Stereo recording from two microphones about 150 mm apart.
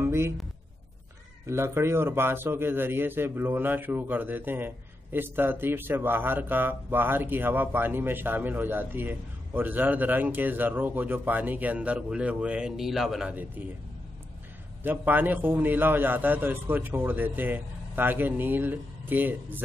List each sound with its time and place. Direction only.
0.0 s a sound: 15° right (ahead or behind)
1.4 s speech: 20° right (ahead or behind)
14.8 s speech: 10° right (ahead or behind)